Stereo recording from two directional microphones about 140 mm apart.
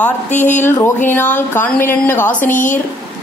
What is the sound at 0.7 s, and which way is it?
Speech, 15° left (ahead or behind).